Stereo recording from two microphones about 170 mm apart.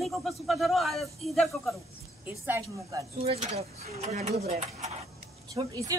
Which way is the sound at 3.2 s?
35° right (ahead or behind).